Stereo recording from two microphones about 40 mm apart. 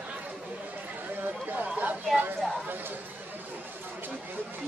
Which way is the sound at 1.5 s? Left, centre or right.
Right.